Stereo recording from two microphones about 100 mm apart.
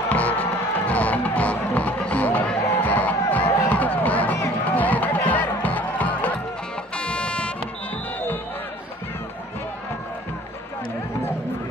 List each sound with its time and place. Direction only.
0.1 s music: 15° left (ahead or behind)